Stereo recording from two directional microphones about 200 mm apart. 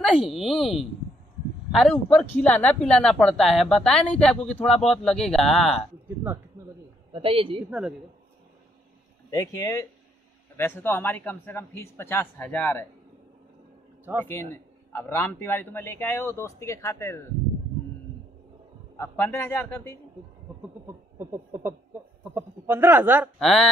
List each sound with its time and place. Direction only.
0.0 s speech: centre (ahead or behind)
6.0 s a sound: 10° right (ahead or behind)
7.1 s a man's voice: 25° right (ahead or behind)
9.3 s a man's voice: 15° left (ahead or behind)
14.2 s a man's voice: 10° left (ahead or behind)
18.9 s a man's voice: 10° left (ahead or behind)
20.8 s speech: 10° right (ahead or behind)
23.4 s speech: centre (ahead or behind)